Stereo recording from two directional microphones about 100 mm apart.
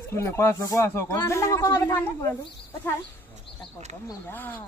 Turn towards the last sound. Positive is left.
turn(degrees=20)  # may be behind; listen again after turning